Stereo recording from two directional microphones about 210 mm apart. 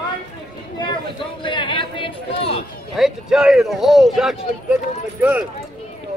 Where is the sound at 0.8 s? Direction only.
25° left (ahead or behind).